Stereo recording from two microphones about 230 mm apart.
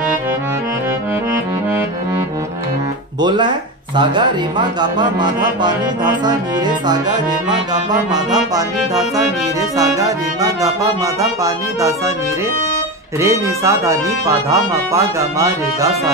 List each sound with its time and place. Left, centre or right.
3.2 s speech: centre
6.2 s music: centre
8.5 s music: centre
13.2 s music: centre